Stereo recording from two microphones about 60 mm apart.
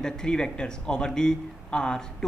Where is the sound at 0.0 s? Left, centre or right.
Centre.